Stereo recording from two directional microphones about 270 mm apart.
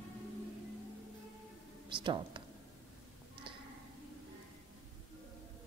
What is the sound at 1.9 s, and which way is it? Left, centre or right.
Speech, centre.